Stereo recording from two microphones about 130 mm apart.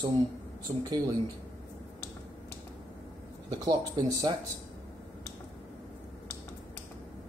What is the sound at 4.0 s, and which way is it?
Speech, 35° right (ahead or behind).